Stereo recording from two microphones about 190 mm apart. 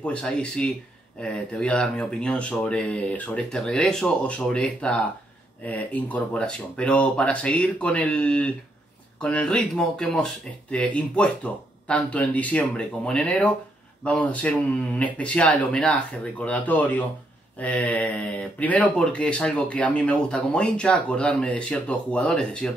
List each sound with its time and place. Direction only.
0.0 s speech: 5° left (ahead or behind)